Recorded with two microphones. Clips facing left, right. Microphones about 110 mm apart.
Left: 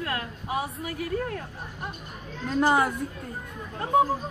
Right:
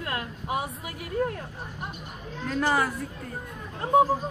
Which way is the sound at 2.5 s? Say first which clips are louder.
Left 3 dB; 20° left (ahead or behind).